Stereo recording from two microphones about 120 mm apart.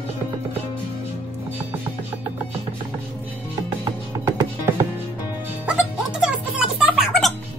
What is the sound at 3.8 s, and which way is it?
Music, 20° right (ahead or behind).